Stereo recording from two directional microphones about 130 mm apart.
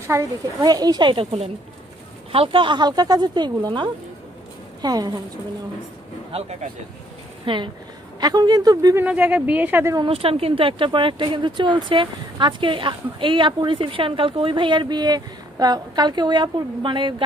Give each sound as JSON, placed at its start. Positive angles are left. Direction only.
{"t": 0.0, "sound": "speech", "side_deg": -20}
{"t": 2.3, "sound": "speech", "side_deg": -45}
{"t": 7.4, "sound": "a woman's voice", "side_deg": -40}
{"t": 8.9, "sound": "speech", "side_deg": -10}
{"t": 9.9, "sound": "speech", "side_deg": -45}